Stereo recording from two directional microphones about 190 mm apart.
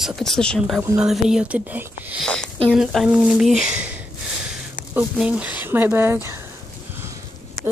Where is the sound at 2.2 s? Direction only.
5° left (ahead or behind); by 6.4 s 10° right (ahead or behind).